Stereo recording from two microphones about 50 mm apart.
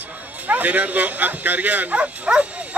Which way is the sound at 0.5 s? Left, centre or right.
Right.